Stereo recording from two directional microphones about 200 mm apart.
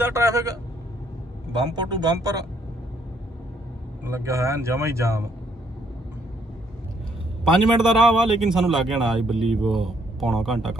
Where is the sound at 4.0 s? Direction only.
15° right (ahead or behind).